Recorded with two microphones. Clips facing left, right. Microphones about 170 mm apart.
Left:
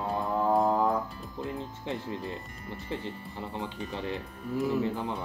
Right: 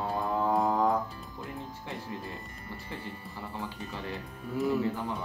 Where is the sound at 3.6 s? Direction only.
20° left (ahead or behind).